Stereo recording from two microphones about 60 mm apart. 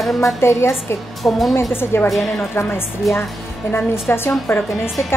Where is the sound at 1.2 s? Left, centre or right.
Centre.